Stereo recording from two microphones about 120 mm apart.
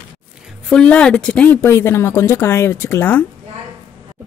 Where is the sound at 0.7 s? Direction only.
10° left (ahead or behind).